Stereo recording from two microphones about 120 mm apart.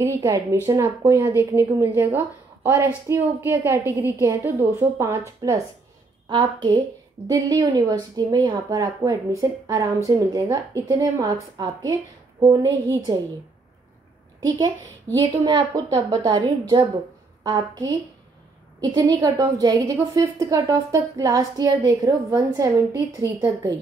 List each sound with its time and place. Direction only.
0.0 s a woman's voice: 25° right (ahead or behind)
6.2 s a woman's voice: 40° right (ahead or behind)
15.2 s a woman's voice: 40° right (ahead or behind)